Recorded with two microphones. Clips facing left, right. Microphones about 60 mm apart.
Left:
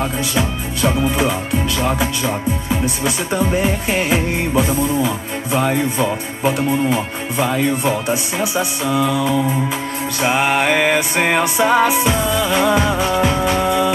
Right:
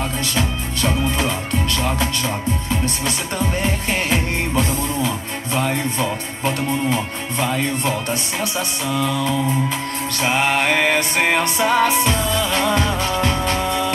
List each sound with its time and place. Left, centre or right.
0.3 s music: centre